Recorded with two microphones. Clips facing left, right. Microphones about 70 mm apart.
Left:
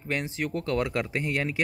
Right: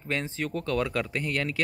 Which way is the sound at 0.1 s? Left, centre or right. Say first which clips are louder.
Left 1 dB; centre.